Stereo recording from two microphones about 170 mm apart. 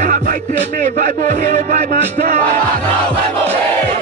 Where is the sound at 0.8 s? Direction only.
50° right (ahead or behind).